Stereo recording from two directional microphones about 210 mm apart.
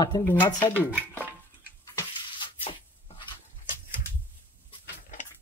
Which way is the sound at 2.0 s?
20° left (ahead or behind).